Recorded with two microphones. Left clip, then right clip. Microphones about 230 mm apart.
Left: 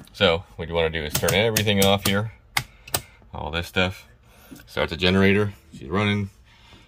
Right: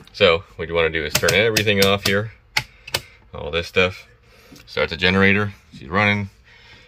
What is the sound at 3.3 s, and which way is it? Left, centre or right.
Speech, centre.